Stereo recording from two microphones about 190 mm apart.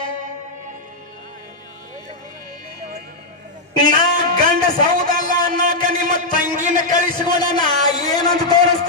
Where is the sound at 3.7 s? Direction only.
20° left (ahead or behind).